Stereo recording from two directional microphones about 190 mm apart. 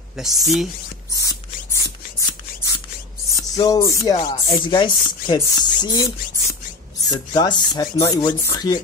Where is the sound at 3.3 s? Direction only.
20° left (ahead or behind).